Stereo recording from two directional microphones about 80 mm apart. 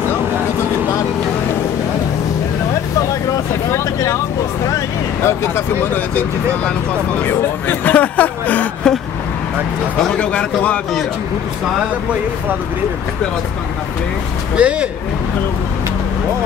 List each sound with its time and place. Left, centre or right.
3.7 s speech: left
5.2 s speech: left
5.9 s speech: centre
8.8 s a man's voice: centre
10.1 s a man's voice: centre
14.5 s speech: centre